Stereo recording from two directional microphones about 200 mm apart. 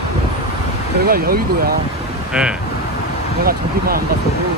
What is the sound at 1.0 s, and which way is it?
Speech, 50° right (ahead or behind).